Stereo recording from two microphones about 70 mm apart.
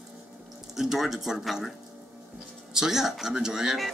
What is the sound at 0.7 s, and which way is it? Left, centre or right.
Speech, centre.